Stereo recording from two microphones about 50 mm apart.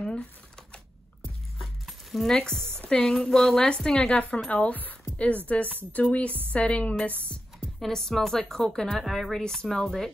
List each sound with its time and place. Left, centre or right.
1.6 s music: centre
2.2 s a woman's voice: centre
4.5 s a woman's voice: left
7.8 s a woman's voice: centre